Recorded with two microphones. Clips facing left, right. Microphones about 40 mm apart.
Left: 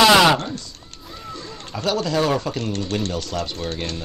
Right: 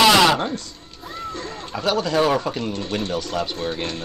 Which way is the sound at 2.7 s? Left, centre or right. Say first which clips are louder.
Even; right.